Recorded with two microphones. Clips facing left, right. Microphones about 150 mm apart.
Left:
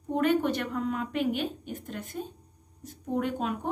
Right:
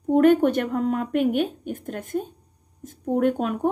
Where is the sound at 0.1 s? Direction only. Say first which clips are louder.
Right 9 dB; 50° right (ahead or behind).